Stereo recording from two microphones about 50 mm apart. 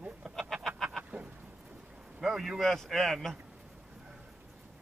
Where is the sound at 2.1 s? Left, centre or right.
Centre.